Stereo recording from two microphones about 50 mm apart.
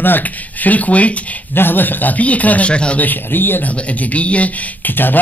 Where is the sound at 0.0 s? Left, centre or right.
Left.